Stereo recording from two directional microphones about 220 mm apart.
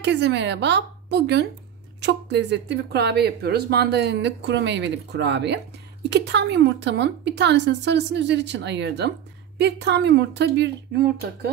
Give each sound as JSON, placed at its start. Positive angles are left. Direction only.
{"t": 0.0, "sound": "speech", "side_deg": -50}